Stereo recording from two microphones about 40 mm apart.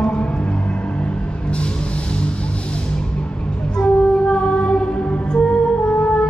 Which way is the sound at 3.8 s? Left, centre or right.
Left.